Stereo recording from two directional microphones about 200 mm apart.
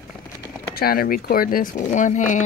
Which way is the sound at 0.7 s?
45° left (ahead or behind).